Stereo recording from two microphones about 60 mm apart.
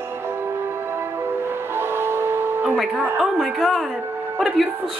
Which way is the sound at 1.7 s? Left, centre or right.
Right.